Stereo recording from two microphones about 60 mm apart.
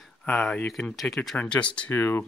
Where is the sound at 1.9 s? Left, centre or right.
Left.